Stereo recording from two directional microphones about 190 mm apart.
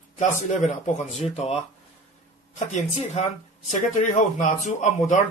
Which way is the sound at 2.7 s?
40° left (ahead or behind).